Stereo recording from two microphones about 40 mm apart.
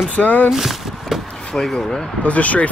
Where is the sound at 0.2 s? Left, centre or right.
Left.